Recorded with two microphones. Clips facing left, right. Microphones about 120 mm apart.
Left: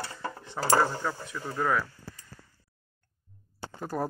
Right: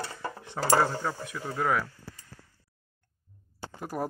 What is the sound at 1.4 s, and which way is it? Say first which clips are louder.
Speech: even; 25° right (ahead or behind).